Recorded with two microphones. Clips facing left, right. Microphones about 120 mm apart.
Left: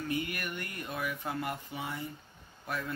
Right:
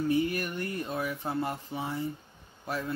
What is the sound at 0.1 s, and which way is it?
Speech, 30° right (ahead or behind).